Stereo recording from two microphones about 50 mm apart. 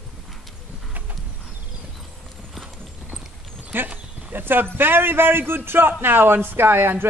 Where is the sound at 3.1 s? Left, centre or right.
Centre.